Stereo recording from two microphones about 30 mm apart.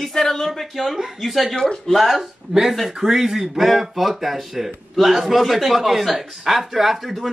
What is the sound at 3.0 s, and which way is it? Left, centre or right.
A man's voice, centre.